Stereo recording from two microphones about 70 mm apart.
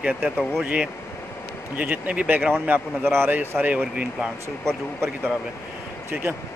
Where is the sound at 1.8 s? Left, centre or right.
Right.